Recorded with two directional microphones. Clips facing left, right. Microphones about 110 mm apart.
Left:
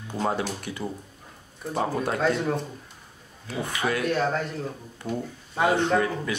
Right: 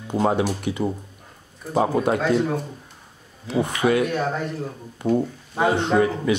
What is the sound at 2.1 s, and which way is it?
Speech, centre (ahead or behind).